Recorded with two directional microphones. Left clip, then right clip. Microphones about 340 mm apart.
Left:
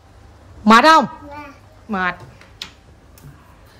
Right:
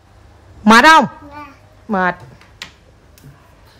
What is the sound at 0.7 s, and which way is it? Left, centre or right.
Speech, left.